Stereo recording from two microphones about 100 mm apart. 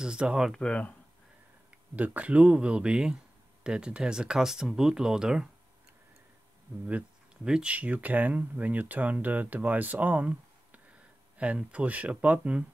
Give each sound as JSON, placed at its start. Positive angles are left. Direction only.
{"t": 0.0, "sound": "speech", "side_deg": -10}
{"t": 0.6, "sound": "speech", "side_deg": 10}
{"t": 2.0, "sound": "speech", "side_deg": -15}
{"t": 6.9, "sound": "speech", "side_deg": -10}